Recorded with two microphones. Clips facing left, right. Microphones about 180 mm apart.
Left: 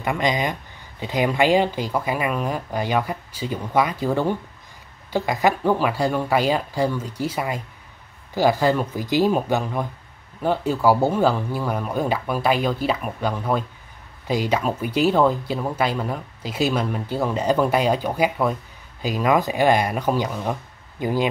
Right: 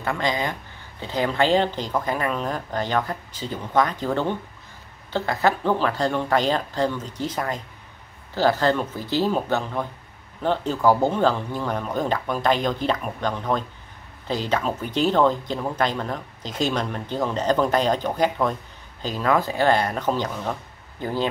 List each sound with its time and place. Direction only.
0.0 s speech: 15° left (ahead or behind)